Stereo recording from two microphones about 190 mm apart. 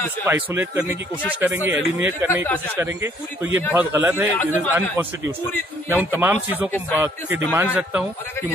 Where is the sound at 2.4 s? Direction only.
10° left (ahead or behind).